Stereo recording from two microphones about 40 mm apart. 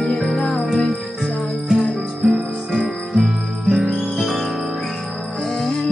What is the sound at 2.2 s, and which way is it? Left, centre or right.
Music, centre.